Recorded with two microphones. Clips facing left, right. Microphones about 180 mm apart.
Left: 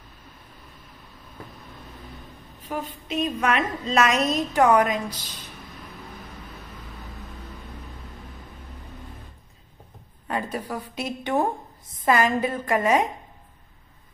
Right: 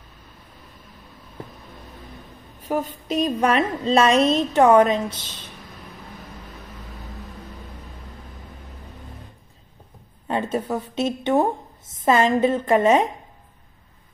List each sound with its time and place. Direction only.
2.6 s a woman's voice: 45° right (ahead or behind); by 5.5 s 25° right (ahead or behind)
10.2 s a woman's voice: 25° right (ahead or behind)